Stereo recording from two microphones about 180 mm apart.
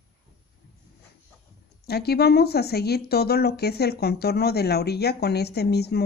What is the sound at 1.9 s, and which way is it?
Speech, 60° left (ahead or behind).